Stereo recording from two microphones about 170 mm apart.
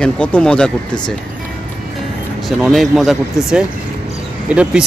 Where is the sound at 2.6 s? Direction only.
Centre (ahead or behind).